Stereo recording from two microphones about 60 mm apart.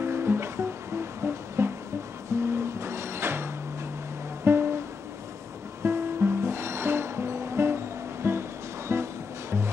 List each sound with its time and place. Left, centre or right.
0.0 s music: right
4.5 s music: right
5.9 s music: right